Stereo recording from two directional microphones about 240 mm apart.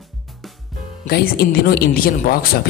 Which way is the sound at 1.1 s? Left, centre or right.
Left.